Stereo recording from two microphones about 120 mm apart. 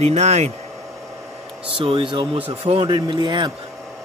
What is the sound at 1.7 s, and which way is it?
Speech, 50° right (ahead or behind).